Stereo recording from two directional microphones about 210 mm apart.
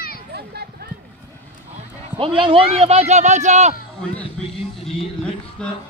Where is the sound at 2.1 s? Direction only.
25° right (ahead or behind).